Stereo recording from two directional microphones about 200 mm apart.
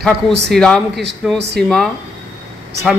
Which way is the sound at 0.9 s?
60° right (ahead or behind).